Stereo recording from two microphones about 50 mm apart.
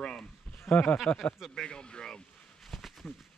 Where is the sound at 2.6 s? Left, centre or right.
Centre.